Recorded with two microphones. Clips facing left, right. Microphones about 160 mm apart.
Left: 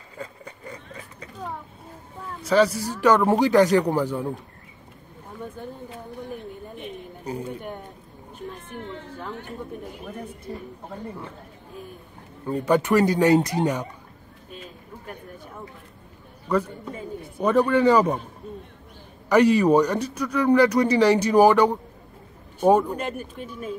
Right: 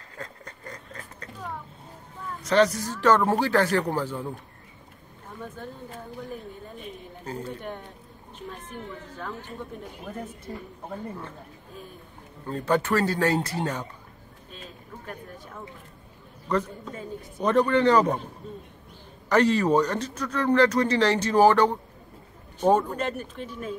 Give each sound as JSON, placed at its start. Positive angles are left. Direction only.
{"t": 0.2, "sound": "a sound", "side_deg": 10}
{"t": 2.4, "sound": "a man's voice", "side_deg": 5}
{"t": 7.2, "sound": "a man's voice", "side_deg": 10}
{"t": 12.4, "sound": "a man's voice", "side_deg": 15}
{"t": 16.4, "sound": "a man's voice", "side_deg": 10}
{"t": 19.2, "sound": "a man's voice", "side_deg": 10}